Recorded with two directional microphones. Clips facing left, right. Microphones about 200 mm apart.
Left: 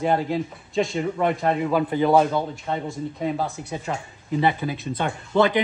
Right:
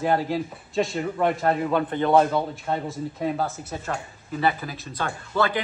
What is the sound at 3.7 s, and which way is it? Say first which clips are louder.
Speech: left 1 dB; 15° left (ahead or behind).